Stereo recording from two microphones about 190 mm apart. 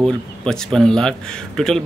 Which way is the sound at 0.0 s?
5° left (ahead or behind).